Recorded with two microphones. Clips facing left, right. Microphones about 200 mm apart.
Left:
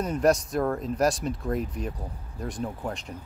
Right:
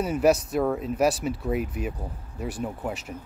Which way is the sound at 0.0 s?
5° right (ahead or behind).